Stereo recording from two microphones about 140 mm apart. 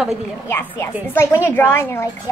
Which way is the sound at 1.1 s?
15° left (ahead or behind).